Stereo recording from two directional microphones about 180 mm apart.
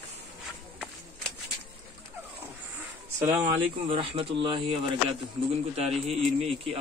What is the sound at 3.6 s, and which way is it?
Speech, 30° right (ahead or behind).